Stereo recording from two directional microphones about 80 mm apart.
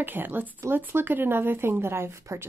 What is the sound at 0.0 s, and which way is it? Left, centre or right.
A woman's voice, right.